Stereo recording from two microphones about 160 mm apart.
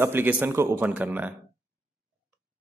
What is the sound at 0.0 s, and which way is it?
Speech, 15° right (ahead or behind).